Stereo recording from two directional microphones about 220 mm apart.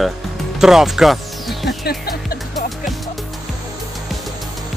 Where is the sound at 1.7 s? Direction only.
45° left (ahead or behind).